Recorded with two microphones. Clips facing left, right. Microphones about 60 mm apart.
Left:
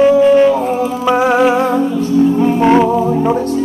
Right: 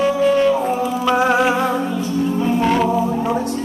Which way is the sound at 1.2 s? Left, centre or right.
Centre.